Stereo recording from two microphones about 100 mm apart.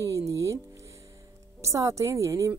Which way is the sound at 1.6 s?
35° right (ahead or behind).